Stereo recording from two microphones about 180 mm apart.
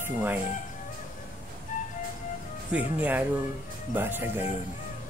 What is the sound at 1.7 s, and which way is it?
Music, 45° left (ahead or behind).